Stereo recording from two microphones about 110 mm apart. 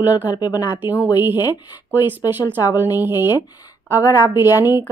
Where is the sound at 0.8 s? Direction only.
15° right (ahead or behind).